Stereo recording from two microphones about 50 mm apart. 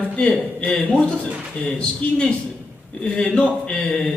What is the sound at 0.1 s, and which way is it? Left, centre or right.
Speech, left.